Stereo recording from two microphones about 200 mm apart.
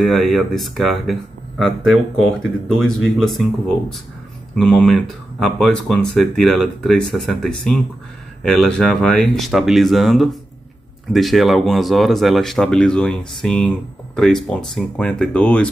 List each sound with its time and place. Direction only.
0.0 s speech: centre (ahead or behind)